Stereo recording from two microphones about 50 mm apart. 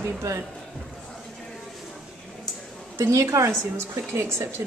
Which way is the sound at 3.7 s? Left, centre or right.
Right.